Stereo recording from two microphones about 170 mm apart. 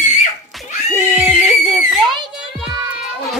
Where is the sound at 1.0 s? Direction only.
10° right (ahead or behind).